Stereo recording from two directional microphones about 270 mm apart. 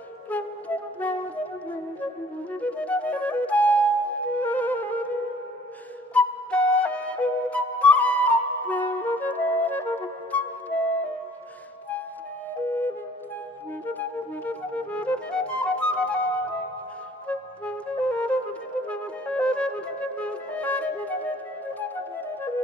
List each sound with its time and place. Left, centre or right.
0.3 s music: centre
2.5 s flute: centre
6.1 s flute: centre
13.8 s music: centre